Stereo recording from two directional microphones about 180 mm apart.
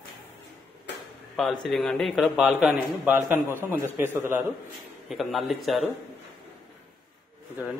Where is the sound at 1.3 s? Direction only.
Centre (ahead or behind).